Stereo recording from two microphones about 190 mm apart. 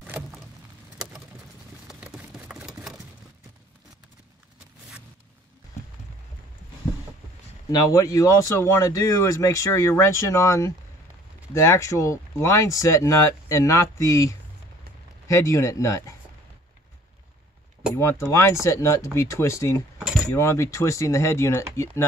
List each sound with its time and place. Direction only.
0.0 s vehicle: 10° right (ahead or behind)
1.9 s a sound: 5° right (ahead or behind)
7.7 s speech: 15° left (ahead or behind)
17.9 s speech: 15° left (ahead or behind)